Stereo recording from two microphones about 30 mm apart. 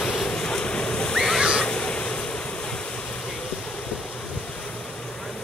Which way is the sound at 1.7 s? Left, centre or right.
Left.